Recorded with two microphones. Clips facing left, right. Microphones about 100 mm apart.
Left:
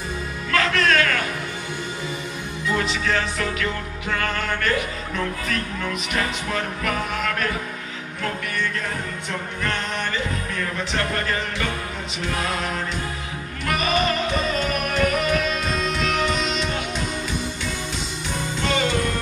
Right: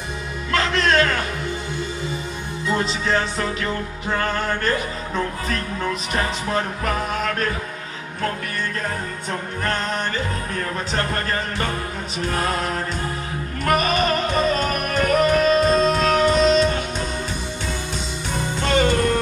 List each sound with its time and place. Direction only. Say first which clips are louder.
0.5 s music: right 1 dB; 25° right (ahead or behind)
2.7 s speech: right 2 dB; 30° right (ahead or behind)
9.6 s speech: right 3 dB; 40° right (ahead or behind)
13.7 s music: right 3 dB; 45° right (ahead or behind)
18.6 s music: right 4 dB; 45° right (ahead or behind)